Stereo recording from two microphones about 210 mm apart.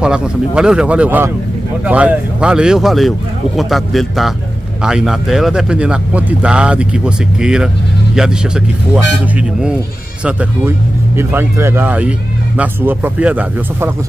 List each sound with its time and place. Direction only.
0.0 s speech: 5° right (ahead or behind)
11.1 s speech: 10° right (ahead or behind)